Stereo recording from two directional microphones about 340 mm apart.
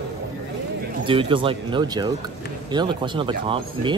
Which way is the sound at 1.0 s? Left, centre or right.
Centre.